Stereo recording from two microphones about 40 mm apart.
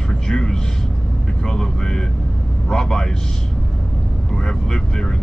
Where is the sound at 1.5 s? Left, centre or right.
Centre.